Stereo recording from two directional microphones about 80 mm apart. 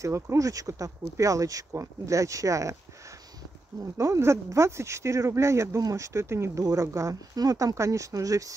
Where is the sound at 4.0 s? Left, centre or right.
Right.